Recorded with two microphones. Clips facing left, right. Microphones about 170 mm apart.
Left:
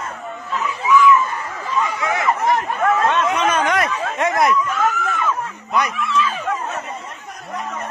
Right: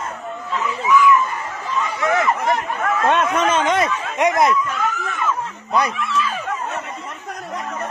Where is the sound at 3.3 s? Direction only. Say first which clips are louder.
Right 1 dB; 25° right (ahead or behind).